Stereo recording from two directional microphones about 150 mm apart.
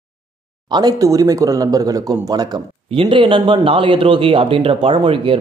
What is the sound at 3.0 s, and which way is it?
A man's voice, 35° right (ahead or behind).